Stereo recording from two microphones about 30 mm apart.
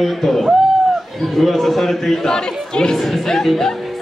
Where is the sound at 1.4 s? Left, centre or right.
Centre.